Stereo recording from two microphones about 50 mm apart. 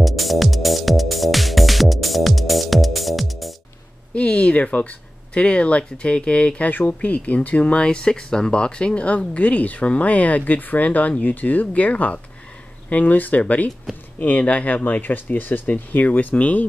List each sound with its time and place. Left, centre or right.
0.0 s music: centre
4.1 s speech: left
6.7 s speech: left